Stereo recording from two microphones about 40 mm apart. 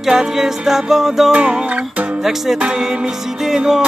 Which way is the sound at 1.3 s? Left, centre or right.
Right.